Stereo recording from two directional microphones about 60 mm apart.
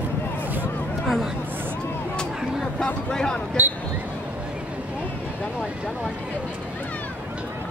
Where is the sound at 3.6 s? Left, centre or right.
Right.